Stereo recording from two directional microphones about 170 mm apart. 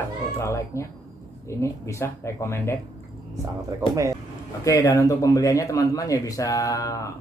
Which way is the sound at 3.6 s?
20° right (ahead or behind).